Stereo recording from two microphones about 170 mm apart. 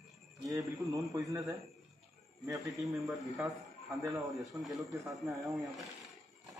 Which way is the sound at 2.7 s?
Centre (ahead or behind).